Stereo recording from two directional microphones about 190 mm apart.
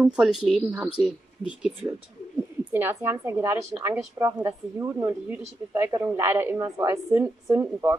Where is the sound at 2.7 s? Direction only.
10° right (ahead or behind).